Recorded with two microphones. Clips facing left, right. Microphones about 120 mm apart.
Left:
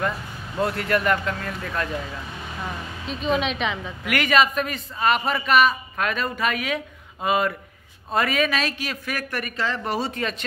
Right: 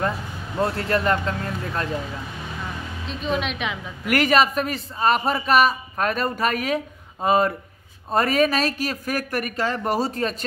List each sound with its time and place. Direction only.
0.6 s speech: 30° right (ahead or behind)
3.1 s a woman's voice: centre (ahead or behind)
4.0 s a man's voice: 40° right (ahead or behind)